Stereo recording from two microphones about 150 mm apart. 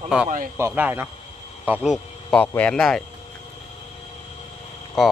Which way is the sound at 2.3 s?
10° left (ahead or behind).